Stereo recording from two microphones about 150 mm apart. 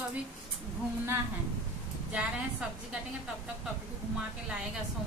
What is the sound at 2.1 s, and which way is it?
Speech, 10° right (ahead or behind).